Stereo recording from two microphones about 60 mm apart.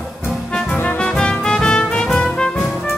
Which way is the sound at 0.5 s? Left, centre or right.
Centre.